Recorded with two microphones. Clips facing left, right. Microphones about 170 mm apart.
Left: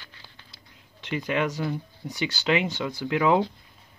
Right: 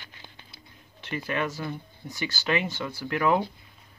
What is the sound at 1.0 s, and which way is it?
Speech, 15° left (ahead or behind).